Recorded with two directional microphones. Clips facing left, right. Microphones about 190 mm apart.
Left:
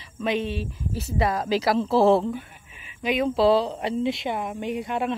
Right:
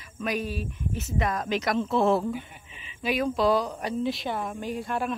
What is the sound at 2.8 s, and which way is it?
Speech, 20° left (ahead or behind).